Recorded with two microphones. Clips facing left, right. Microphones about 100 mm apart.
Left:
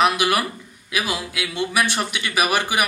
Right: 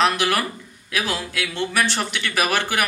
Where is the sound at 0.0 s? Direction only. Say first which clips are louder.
Left 1 dB; 10° left (ahead or behind).